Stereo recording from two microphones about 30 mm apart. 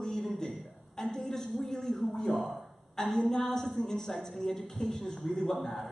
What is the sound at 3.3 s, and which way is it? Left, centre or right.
A woman's voice, centre.